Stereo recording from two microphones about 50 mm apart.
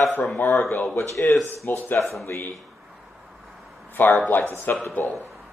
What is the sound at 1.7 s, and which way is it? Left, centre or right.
Speech, left.